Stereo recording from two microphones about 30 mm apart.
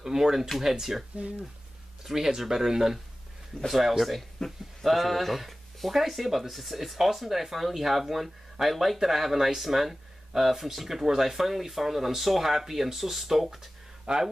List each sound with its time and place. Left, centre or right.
0.0 s speech: centre
2.0 s speech: centre
4.4 s speech: centre
4.8 s speech: centre
14.1 s speech: right